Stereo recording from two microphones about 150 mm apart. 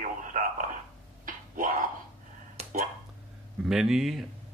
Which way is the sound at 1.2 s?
65° right (ahead or behind).